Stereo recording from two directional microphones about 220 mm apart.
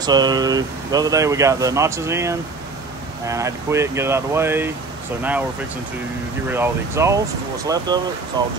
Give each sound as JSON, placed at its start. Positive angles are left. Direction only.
{"t": 0.0, "sound": "speech", "side_deg": -20}
{"t": 6.5, "sound": "speech", "side_deg": -10}